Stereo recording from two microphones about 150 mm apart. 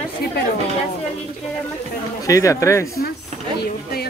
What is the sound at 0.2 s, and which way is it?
Chatter, 90° left.